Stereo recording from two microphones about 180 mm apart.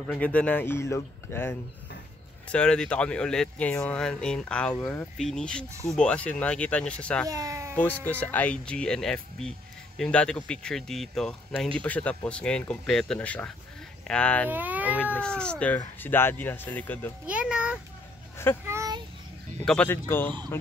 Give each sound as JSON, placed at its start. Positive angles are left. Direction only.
{"t": 0.1, "sound": "speech", "side_deg": 5}
{"t": 7.2, "sound": "speech", "side_deg": -20}
{"t": 8.0, "sound": "speech", "side_deg": 10}
{"t": 14.5, "sound": "speech", "side_deg": -10}
{"t": 15.1, "sound": "speech", "side_deg": 5}
{"t": 17.3, "sound": "a child's voice", "side_deg": -5}
{"t": 18.7, "sound": "child singing", "side_deg": -15}
{"t": 19.6, "sound": "speech", "side_deg": 5}